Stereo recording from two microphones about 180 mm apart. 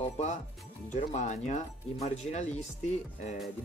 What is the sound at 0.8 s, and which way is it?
Speech, 40° left (ahead or behind).